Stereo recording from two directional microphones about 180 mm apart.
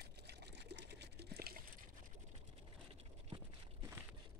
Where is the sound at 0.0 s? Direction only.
65° right (ahead or behind).